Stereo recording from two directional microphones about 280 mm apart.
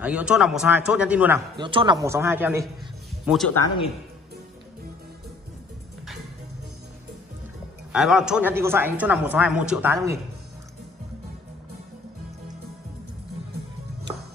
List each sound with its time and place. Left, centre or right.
0.0 s a man's voice: centre
7.9 s a man's voice: centre